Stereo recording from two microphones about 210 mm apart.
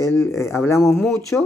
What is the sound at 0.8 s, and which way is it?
Speech, centre (ahead or behind).